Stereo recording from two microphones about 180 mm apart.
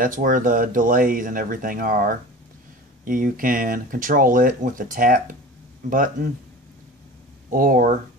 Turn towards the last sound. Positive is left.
turn(degrees=-50)  # may be behind; listen again after turning